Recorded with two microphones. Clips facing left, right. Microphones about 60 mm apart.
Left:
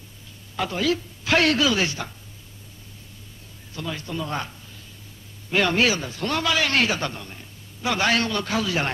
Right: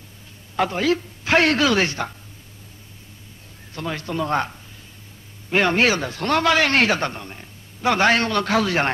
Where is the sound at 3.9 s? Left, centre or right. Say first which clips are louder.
Right 8 dB; right.